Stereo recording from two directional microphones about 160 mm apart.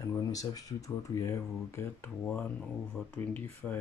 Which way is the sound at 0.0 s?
20° left (ahead or behind).